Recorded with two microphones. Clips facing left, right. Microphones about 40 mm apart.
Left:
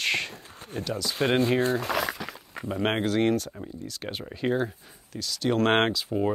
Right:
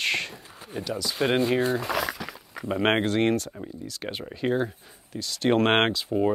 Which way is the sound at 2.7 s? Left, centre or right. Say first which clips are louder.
Right 3 dB; right.